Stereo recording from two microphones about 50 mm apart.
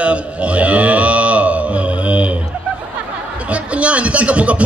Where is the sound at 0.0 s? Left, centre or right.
Right.